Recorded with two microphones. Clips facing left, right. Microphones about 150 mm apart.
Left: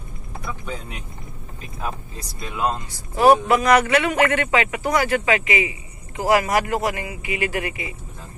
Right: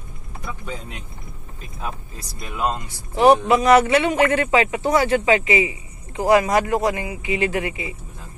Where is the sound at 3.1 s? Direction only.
20° right (ahead or behind).